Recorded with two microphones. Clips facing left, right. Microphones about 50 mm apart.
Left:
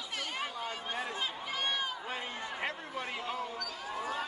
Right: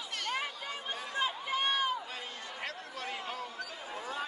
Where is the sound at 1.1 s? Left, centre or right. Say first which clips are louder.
Right 4 dB; centre.